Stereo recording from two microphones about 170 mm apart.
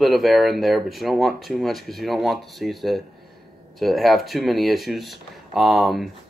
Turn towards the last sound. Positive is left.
turn(degrees=0)  # may be behind; listen again after turning